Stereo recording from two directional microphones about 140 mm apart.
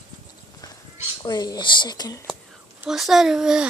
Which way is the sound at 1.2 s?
30° left (ahead or behind).